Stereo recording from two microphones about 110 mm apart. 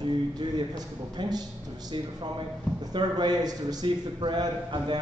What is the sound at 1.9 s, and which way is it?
Speech, 40° right (ahead or behind).